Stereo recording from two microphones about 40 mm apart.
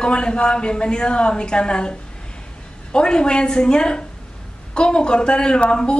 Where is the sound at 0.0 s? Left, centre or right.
Left.